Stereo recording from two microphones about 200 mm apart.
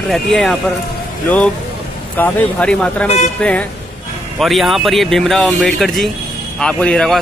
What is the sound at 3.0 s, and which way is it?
Speech, 35° left (ahead or behind).